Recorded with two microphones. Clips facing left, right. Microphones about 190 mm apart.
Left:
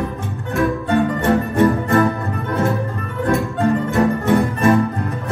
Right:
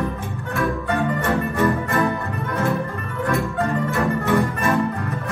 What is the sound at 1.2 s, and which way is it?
Music, 35° left (ahead or behind).